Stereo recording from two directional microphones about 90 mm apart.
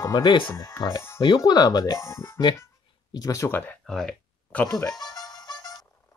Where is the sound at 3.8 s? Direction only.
5° left (ahead or behind).